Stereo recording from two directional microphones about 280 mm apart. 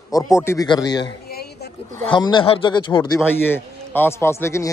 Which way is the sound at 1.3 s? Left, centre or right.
Left.